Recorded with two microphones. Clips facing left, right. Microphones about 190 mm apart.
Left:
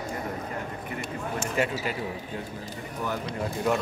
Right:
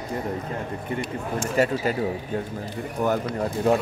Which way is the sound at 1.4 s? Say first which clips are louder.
Right 6 dB; 40° right (ahead or behind).